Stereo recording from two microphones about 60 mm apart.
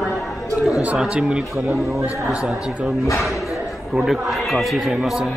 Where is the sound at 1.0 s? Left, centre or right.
Centre.